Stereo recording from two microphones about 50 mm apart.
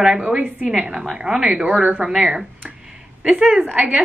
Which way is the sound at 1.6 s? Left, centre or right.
Right.